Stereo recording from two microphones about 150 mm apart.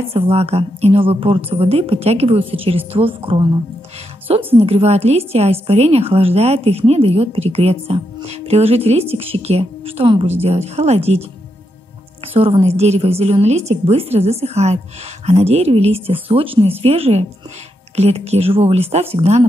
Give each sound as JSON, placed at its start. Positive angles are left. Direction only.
{"t": 0.1, "sound": "a woman's voice", "side_deg": -40}
{"t": 4.6, "sound": "a woman's voice", "side_deg": -45}
{"t": 12.4, "sound": "a woman's voice", "side_deg": -40}